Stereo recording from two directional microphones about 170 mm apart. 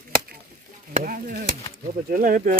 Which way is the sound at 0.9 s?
55° right (ahead or behind).